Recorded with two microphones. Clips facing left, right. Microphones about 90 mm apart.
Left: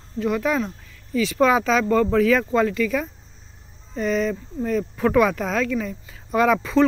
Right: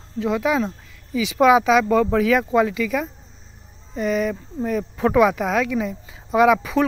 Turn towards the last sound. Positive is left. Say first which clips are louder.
# right 1 dB
turn(degrees=-15)  # may be behind; listen again after turning